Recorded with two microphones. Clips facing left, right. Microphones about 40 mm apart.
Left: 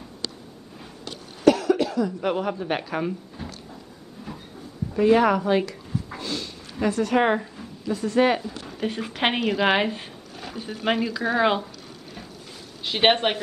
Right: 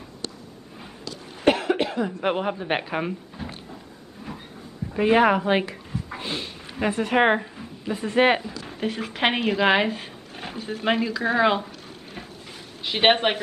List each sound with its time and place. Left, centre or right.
1.4 s cough: right
2.2 s speech: right
3.4 s a sound: centre
4.2 s train: right
4.9 s speech: right
8.8 s a woman's voice: centre
10.3 s a sound: right
10.8 s speech: centre
11.3 s a woman's voice: centre
12.8 s speech: centre